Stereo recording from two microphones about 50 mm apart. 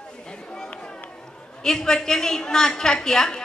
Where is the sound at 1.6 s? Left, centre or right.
Centre.